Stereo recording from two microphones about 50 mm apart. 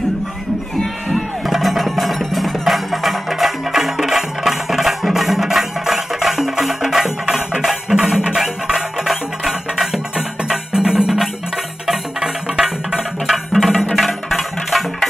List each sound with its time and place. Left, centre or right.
1.1 s music: centre
10.1 s music: centre